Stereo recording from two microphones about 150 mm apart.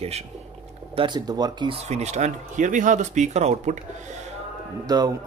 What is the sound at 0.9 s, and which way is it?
Speech, 30° right (ahead or behind).